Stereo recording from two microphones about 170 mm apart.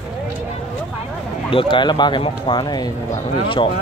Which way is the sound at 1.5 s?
30° left (ahead or behind).